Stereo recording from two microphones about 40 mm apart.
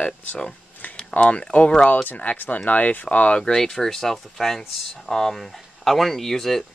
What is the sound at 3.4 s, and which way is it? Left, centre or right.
Speech, left.